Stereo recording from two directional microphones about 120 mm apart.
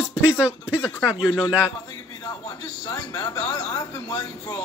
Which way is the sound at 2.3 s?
30° left (ahead or behind).